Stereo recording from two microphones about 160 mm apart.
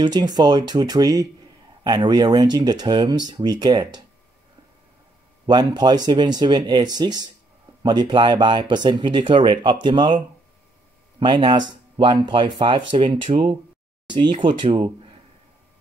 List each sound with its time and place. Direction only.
0.0 s speech: 25° right (ahead or behind)
5.5 s speech: 25° right (ahead or behind)